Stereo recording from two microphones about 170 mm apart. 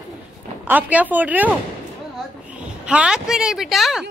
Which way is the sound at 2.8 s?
5° right (ahead or behind).